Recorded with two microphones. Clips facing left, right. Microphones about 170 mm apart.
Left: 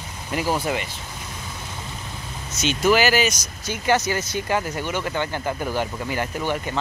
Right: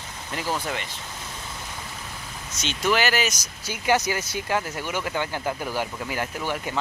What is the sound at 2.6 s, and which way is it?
Speech, 5° left (ahead or behind).